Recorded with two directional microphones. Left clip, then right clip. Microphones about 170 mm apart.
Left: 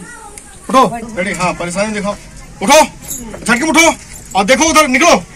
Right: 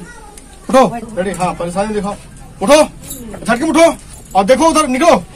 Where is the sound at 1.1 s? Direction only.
45° right (ahead or behind).